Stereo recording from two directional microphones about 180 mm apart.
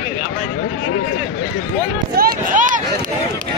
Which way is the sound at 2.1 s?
50° right (ahead or behind).